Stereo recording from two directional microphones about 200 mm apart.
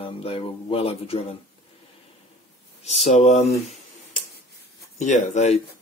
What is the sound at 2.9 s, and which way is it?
Speech, 35° left (ahead or behind).